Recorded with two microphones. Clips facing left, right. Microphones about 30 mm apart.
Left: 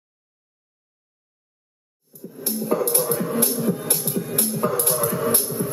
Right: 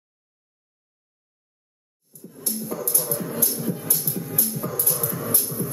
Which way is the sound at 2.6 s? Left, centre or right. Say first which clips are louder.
Left 9 dB; left.